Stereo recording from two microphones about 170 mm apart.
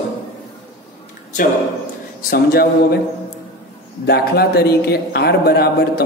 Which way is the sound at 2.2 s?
60° left (ahead or behind).